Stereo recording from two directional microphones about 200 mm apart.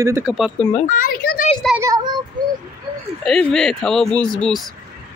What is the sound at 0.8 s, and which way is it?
Speech, 45° left (ahead or behind).